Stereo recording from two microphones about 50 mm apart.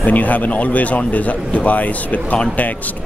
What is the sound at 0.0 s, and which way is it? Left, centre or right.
Speech, left.